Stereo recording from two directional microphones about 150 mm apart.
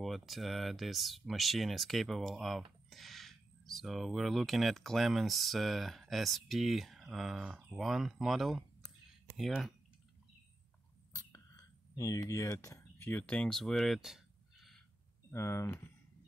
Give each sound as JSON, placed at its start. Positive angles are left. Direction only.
{"t": 0.0, "sound": "speech", "side_deg": 0}
{"t": 11.1, "sound": "a sound", "side_deg": 25}
{"t": 15.3, "sound": "speech", "side_deg": 15}